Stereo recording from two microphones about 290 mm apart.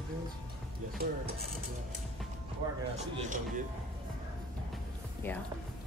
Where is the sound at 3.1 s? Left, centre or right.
Right.